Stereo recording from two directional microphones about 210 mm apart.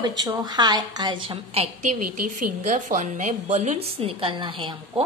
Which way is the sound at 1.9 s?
40° right (ahead or behind).